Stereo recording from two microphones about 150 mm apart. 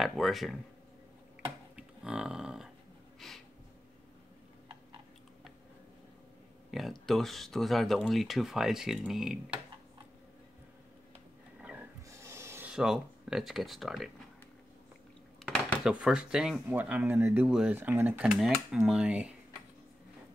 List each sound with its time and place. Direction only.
0.0 s speech: centre (ahead or behind)
1.8 s cattle: 5° right (ahead or behind)
3.2 s a sound: centre (ahead or behind)
6.7 s speech: centre (ahead or behind)
12.1 s filing: 20° right (ahead or behind)
12.7 s speech: 5° right (ahead or behind)
15.4 s speech: 5° right (ahead or behind)